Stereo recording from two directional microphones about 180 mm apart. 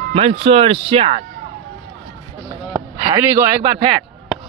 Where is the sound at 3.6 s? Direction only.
25° right (ahead or behind).